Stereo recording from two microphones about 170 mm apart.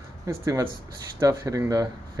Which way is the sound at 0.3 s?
20° right (ahead or behind).